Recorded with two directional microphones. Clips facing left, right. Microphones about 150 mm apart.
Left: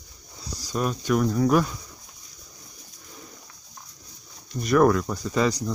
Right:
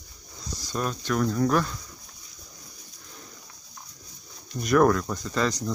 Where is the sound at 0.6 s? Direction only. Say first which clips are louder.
Left 4 dB; 10° left (ahead or behind).